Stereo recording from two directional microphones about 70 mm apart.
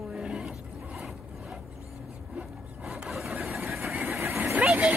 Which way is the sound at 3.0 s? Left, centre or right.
Centre.